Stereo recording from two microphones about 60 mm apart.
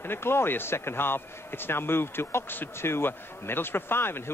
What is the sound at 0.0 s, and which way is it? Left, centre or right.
Speech, left.